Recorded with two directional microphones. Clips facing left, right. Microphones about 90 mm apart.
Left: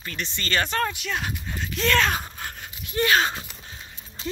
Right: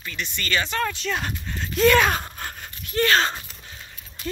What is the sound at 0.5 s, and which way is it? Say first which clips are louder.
Speech: left 1 dB; 40° left (ahead or behind).